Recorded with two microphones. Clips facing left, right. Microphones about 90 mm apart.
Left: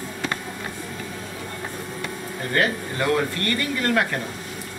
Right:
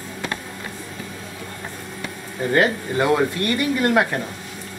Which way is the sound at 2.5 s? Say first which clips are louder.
Right 4 dB; 20° right (ahead or behind).